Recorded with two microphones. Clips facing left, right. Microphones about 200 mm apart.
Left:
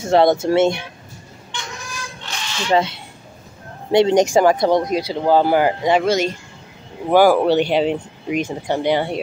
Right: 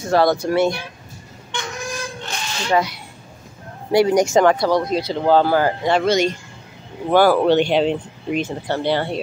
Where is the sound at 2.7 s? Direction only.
25° left (ahead or behind).